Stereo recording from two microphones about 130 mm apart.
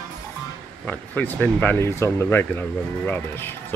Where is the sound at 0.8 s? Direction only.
15° left (ahead or behind).